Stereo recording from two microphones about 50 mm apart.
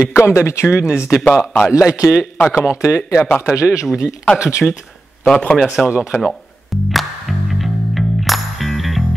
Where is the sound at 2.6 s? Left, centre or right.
Left.